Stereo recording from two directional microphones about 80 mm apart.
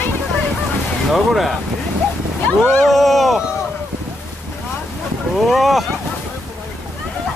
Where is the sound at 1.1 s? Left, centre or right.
Centre.